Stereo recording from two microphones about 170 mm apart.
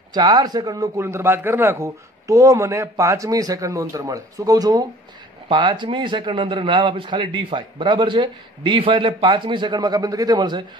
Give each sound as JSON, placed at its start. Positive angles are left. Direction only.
{"t": 0.1, "sound": "a man's voice", "side_deg": -25}